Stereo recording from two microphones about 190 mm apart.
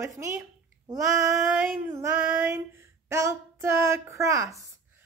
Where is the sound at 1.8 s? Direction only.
15° right (ahead or behind).